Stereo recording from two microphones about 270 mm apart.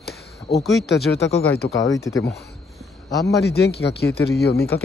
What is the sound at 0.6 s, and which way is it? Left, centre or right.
Speech, centre.